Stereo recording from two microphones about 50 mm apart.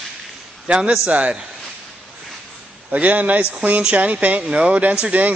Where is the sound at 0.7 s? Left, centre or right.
Right.